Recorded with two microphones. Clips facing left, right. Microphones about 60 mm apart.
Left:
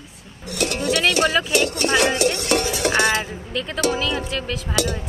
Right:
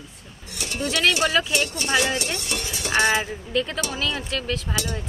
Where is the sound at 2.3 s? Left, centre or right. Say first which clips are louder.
Left 9 dB; left.